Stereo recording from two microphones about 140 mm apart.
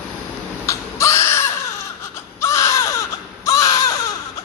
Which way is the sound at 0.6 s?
20° left (ahead or behind).